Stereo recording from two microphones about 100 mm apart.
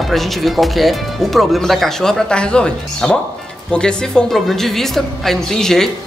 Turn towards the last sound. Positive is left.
turn(degrees=5)  # may be behind; listen again after turning